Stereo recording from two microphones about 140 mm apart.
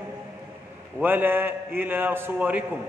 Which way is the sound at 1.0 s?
15° right (ahead or behind).